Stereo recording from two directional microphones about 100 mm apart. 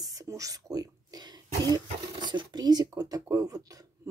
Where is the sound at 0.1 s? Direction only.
35° right (ahead or behind).